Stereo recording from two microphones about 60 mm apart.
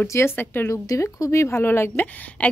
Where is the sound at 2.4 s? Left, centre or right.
Left.